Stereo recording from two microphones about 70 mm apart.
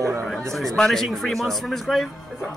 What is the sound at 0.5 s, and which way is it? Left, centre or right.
A man's voice, centre.